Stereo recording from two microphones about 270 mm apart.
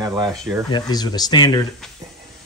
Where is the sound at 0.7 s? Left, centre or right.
Centre.